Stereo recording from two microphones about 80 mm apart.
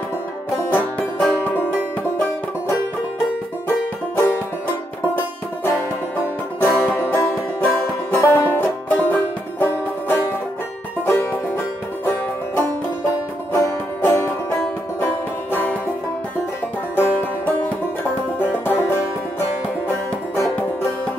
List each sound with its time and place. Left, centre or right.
0.7 s music: left
5.6 s music: left
8.1 s music: left
8.4 s music: left
15.5 s music: left
16.9 s music: left